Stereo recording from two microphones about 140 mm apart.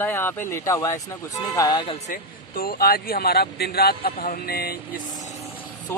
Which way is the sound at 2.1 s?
90° left.